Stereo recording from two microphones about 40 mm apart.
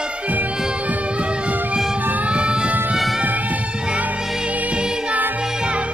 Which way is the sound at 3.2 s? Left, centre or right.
Right.